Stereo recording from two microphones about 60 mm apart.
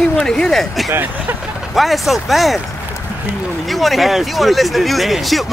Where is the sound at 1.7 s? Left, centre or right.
Centre.